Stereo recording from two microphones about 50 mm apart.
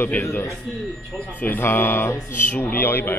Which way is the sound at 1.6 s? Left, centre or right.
Left.